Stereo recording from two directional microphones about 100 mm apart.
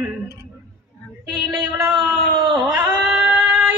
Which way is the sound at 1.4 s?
25° right (ahead or behind).